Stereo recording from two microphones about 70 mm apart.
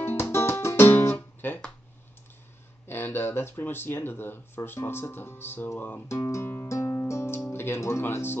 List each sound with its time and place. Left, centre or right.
0.0 s music: left
2.9 s speech: left
6.2 s music: left
7.4 s speech: left